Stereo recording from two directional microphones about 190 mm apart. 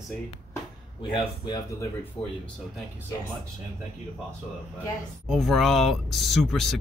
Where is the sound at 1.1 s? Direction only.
25° left (ahead or behind).